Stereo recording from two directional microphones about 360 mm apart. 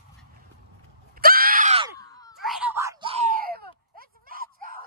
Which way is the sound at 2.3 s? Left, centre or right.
Centre.